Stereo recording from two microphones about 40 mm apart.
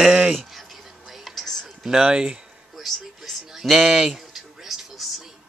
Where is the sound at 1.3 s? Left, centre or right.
Centre.